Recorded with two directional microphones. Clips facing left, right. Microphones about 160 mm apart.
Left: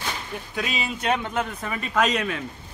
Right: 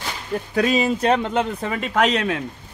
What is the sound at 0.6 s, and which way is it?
Speech, 40° right (ahead or behind).